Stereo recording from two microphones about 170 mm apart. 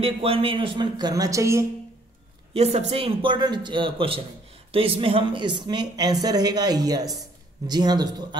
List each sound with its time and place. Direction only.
0.0 s speech: 35° right (ahead or behind); by 1.7 s 15° right (ahead or behind)
2.5 s a man's voice: 40° right (ahead or behind)